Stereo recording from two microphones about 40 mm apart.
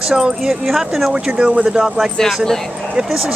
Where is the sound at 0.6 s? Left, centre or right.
Centre.